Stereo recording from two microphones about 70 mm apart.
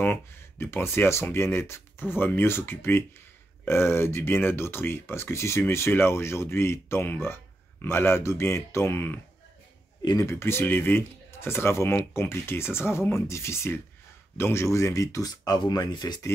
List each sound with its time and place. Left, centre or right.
0.0 s speech: left
10.2 s speech: left
15.4 s speech: left